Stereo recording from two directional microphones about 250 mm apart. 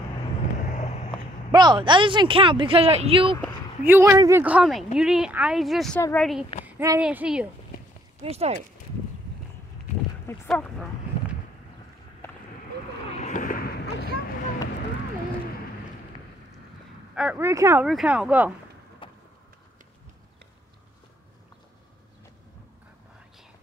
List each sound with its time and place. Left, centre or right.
0.6 s vehicle: left
1.5 s speech: centre
3.8 s a woman's voice: centre
6.6 s speech: centre
8.2 s speech: right
10.2 s speech: centre
13.2 s a sound: left
17.1 s a woman's voice: centre
19.0 s vehicle: centre